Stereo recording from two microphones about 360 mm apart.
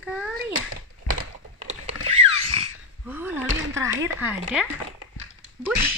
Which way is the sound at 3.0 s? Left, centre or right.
Centre.